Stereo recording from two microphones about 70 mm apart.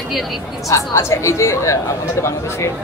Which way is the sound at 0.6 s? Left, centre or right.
Left.